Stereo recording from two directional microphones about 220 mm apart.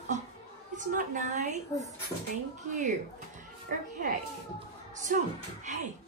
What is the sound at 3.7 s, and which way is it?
Speech, 40° right (ahead or behind).